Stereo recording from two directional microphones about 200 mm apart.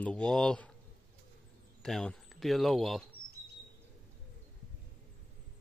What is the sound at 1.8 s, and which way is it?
Speech, centre (ahead or behind).